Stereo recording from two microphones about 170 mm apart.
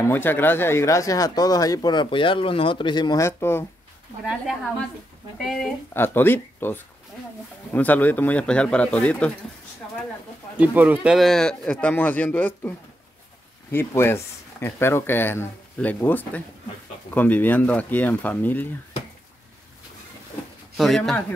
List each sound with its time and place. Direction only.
0.0 s speech: 10° left (ahead or behind)
5.4 s speech: centre (ahead or behind)
5.9 s speech: 10° left (ahead or behind)
10.6 s speech: 10° right (ahead or behind); by 18.7 s 10° left (ahead or behind)
20.7 s speech: centre (ahead or behind)